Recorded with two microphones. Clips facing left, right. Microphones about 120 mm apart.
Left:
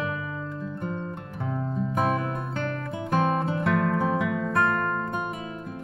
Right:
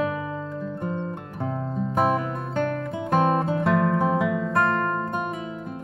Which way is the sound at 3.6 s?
20° right (ahead or behind).